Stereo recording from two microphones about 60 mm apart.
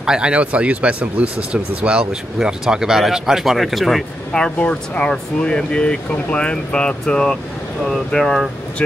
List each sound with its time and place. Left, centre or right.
0.0 s speech: centre
4.3 s speech: centre